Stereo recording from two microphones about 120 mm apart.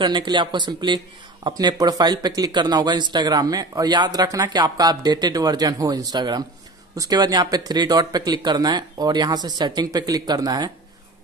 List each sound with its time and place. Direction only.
0.0 s a man's voice: 40° right (ahead or behind)